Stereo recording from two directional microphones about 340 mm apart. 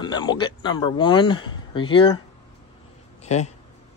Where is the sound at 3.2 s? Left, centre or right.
Centre.